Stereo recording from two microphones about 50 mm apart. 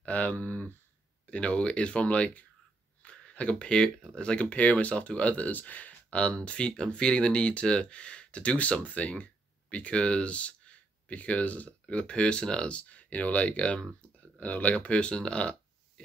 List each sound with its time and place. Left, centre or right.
0.0 s speech: left